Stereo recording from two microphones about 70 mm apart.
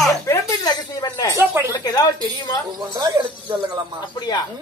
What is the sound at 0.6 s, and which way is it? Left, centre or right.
A woman's voice, left.